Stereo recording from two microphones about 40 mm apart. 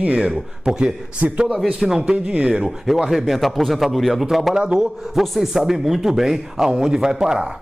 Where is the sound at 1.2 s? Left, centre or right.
Right.